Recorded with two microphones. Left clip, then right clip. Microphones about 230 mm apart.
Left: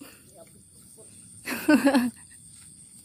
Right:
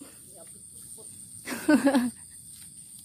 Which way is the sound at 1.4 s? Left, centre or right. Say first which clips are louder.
Left 2 dB; centre.